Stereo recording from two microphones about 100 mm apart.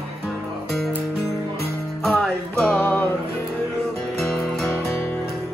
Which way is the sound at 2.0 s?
5° left (ahead or behind).